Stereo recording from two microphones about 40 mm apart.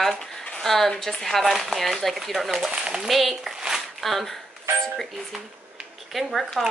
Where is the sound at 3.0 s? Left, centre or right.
Centre.